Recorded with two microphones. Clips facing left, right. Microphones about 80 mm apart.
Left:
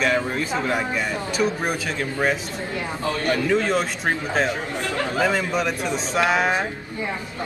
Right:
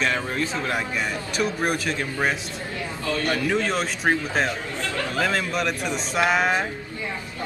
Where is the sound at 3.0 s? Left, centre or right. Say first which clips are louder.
Left 1 dB; left.